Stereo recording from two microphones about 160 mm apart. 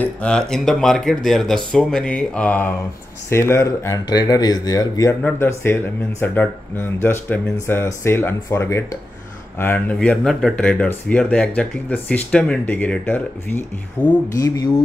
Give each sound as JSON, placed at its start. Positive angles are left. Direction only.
{"t": 0.0, "sound": "speech", "side_deg": 5}
{"t": 14.3, "sound": "speech", "side_deg": 20}